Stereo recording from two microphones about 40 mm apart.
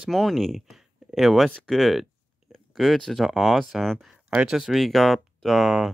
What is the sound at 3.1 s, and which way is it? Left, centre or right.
Speech, centre.